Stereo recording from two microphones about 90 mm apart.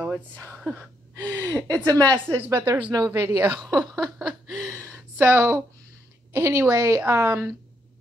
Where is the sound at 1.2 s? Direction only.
20° left (ahead or behind).